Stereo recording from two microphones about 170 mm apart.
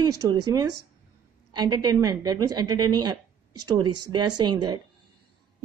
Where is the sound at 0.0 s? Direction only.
20° right (ahead or behind).